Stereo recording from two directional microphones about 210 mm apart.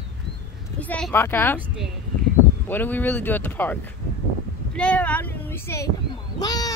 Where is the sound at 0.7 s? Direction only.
5° left (ahead or behind).